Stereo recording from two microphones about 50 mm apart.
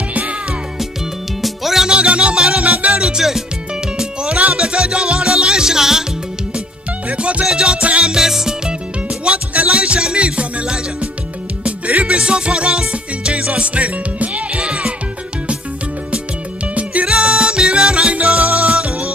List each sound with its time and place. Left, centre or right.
1.4 s music: centre
1.9 s music: right
7.1 s music: right
8.1 s music: centre
9.5 s music: right
16.7 s music: right